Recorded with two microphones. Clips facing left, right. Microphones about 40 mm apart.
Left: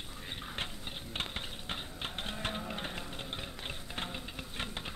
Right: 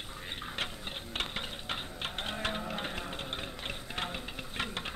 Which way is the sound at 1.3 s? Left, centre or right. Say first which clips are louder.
Right 3 dB; right.